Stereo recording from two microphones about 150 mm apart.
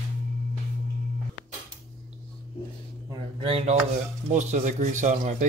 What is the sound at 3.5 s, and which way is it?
Speech, 45° right (ahead or behind).